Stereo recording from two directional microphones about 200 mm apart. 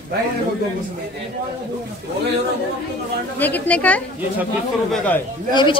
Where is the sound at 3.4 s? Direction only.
10° left (ahead or behind).